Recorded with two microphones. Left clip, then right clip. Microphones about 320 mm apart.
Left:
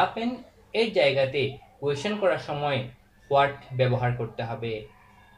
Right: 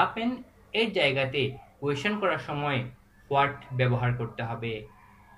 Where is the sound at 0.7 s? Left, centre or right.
Centre.